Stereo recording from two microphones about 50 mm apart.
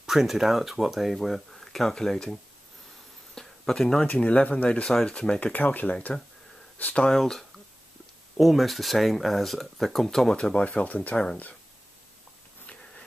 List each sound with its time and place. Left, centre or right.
0.0 s speech: centre
3.3 s a sound: centre
4.2 s speech: left
4.8 s speech: centre
5.5 s speech: left
7.1 s speech: centre
10.3 s speech: left